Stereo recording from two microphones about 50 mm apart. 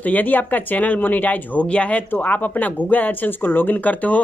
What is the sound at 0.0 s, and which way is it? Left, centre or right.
Speech, left.